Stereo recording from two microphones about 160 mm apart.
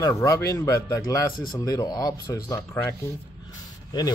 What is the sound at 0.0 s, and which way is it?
A man's voice, 20° left (ahead or behind).